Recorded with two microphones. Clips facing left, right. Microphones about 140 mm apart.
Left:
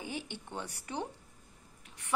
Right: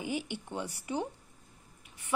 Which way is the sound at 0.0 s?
10° right (ahead or behind).